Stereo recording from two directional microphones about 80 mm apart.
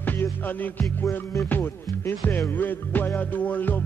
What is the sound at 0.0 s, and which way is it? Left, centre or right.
Music, left.